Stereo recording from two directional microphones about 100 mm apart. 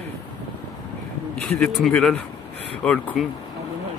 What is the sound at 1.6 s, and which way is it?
Speech, 10° left (ahead or behind).